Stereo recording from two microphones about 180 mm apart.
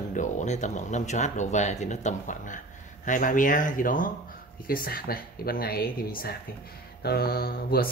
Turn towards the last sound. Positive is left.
turn(degrees=60)  # may be behind; listen again after turning